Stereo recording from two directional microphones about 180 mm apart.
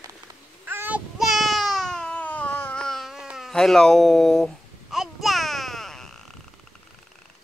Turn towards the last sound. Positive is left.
turn(degrees=0)  # may be behind; listen again after turning